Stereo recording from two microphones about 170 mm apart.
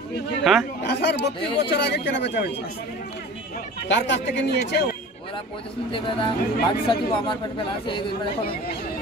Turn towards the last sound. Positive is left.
turn(degrees=30)  # may be behind; listen again after turning